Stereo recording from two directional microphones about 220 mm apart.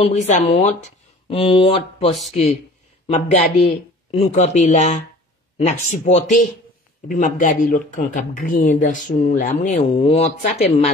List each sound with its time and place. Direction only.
0.0 s speech: 30° left (ahead or behind)
3.1 s speech: 30° left (ahead or behind)